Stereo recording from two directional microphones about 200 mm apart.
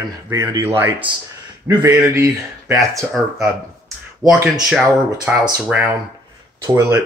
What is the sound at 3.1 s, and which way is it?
Speech, centre (ahead or behind).